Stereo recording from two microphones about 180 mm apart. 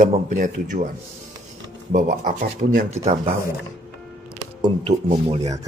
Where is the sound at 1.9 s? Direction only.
45° right (ahead or behind).